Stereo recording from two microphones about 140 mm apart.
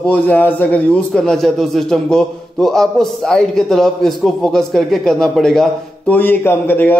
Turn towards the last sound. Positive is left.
turn(degrees=15)  # may be behind; listen again after turning